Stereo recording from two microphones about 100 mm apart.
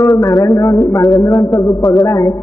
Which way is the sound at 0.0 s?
30° left (ahead or behind).